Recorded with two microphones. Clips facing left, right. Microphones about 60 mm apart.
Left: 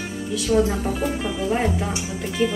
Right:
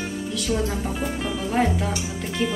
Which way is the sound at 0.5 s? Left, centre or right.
Centre.